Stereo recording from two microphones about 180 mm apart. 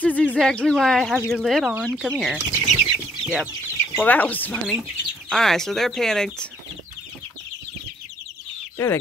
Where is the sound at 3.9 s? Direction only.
10° left (ahead or behind).